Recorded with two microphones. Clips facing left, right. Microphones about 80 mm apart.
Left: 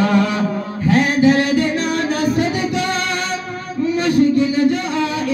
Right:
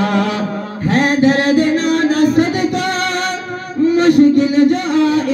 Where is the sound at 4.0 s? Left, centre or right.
Right.